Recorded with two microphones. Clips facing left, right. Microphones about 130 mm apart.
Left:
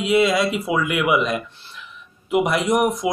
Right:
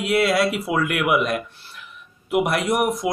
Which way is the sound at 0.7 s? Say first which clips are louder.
Left 1 dB; 5° left (ahead or behind).